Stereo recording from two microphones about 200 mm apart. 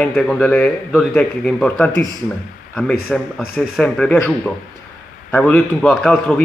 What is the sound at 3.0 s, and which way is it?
A man's voice, centre (ahead or behind).